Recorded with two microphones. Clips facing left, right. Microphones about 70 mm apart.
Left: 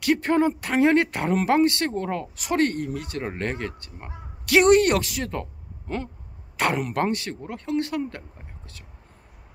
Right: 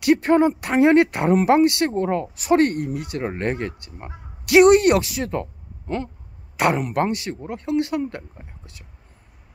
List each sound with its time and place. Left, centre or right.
0.0 s speech: centre
6.5 s speech: centre